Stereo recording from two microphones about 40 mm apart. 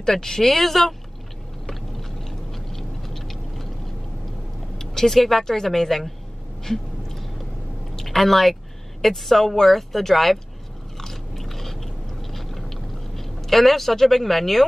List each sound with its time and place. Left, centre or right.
0.0 s speech: centre
1.7 s a sound: centre
4.7 s speech: centre
6.6 s a sound: centre
9.0 s speech: centre
11.0 s biting: centre